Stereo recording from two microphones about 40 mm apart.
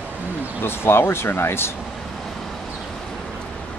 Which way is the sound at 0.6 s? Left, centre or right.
Left.